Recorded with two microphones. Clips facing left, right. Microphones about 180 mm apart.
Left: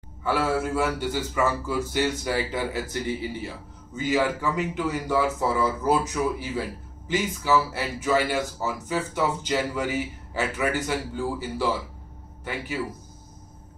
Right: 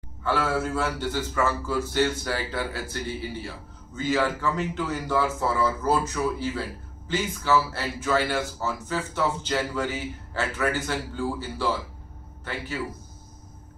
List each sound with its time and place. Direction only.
0.2 s a man's voice: 15° left (ahead or behind)